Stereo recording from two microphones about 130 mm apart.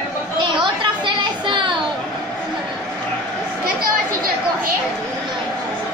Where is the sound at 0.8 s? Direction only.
40° right (ahead or behind).